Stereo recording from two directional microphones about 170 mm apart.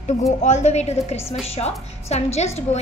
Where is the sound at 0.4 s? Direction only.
45° left (ahead or behind).